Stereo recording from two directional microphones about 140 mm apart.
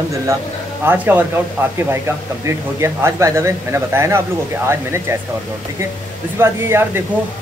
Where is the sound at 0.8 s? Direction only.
10° right (ahead or behind).